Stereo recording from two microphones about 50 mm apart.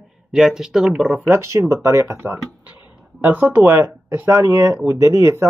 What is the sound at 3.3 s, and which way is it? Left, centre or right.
Speech, right.